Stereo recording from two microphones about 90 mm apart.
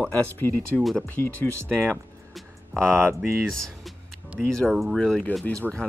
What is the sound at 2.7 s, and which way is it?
Speech, 5° left (ahead or behind).